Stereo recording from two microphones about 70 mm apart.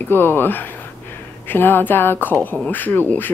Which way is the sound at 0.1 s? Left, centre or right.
Left.